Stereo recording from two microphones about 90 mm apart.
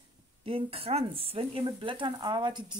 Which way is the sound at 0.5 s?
90° right.